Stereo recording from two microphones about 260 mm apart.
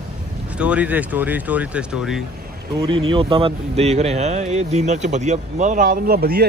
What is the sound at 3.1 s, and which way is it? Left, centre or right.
A man's voice, centre.